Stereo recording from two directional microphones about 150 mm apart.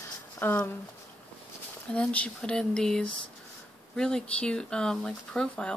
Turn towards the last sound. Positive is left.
turn(degrees=5)  # may be behind; listen again after turning